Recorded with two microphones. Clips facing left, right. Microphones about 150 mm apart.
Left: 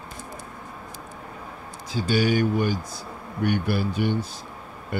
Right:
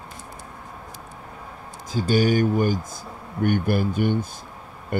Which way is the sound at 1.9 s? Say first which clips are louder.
Right 2 dB; 45° right (ahead or behind).